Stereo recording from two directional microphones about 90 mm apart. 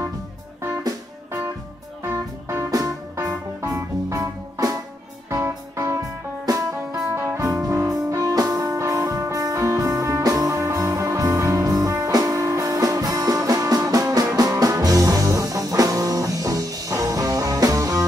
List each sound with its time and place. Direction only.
2.0 s music: 30° right (ahead or behind)